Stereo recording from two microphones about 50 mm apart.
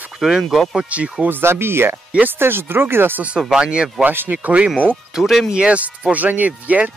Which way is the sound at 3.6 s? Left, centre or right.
Centre.